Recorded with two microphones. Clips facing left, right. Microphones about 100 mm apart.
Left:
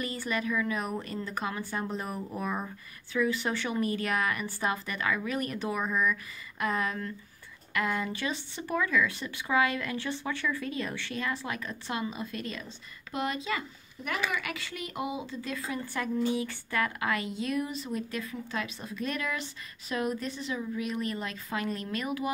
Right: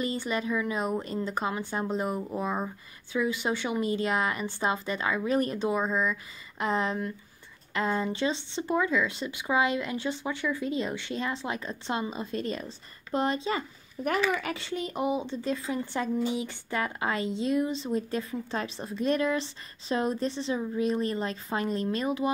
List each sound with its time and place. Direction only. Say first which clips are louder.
0.0 s speech: right 3 dB; 25° right (ahead or behind)